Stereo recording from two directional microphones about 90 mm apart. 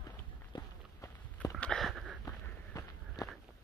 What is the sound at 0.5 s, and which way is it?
Run, 60° left (ahead or behind).